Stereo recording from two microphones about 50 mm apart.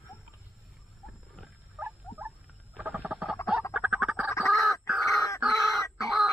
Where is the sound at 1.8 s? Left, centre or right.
Right.